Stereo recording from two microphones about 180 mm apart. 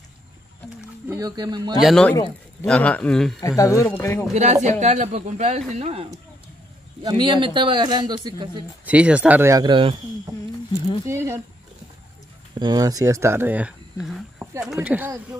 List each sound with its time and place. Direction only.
1.0 s a man's voice: 20° right (ahead or behind)
1.8 s speech: centre (ahead or behind)
3.3 s speech: 20° left (ahead or behind)
4.3 s a man's voice: 40° right (ahead or behind)
8.8 s speech: 5° right (ahead or behind); by 9.9 s 25° right (ahead or behind)
11.1 s speech: 15° right (ahead or behind)
12.5 s speech: 20° right (ahead or behind)